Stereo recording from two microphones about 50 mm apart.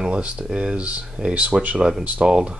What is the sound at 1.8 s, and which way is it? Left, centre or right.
Speech, centre.